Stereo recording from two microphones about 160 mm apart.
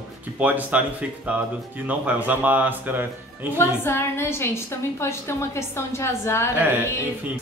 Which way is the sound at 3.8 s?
15° left (ahead or behind).